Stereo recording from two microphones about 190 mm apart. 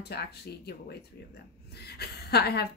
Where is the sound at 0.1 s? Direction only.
55° left (ahead or behind).